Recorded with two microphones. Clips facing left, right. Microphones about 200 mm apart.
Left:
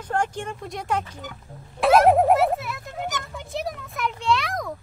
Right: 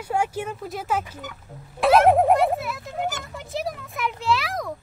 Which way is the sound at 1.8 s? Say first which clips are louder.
Even; centre (ahead or behind).